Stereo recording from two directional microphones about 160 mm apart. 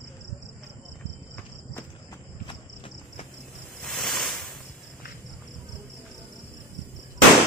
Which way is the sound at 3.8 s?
Centre (ahead or behind).